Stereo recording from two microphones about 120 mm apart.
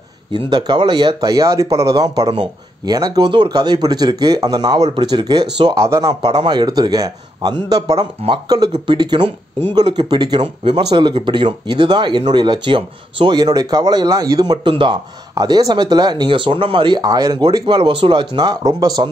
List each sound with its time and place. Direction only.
0.3 s speech: 40° right (ahead or behind)